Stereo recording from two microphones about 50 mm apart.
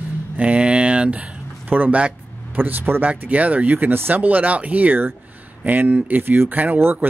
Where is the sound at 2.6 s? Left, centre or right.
Right.